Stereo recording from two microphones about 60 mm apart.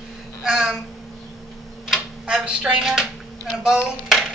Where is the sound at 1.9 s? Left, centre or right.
Centre.